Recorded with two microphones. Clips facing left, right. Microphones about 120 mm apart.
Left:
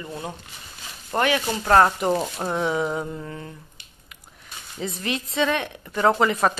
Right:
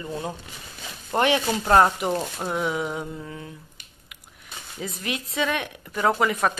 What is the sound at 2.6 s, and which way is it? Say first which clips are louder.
Speech: left 4 dB; 30° left (ahead or behind).